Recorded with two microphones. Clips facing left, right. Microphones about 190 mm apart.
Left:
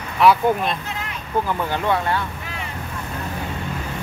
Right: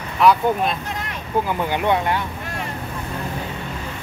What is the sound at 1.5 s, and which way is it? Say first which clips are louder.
Speech: right 2 dB; 20° right (ahead or behind).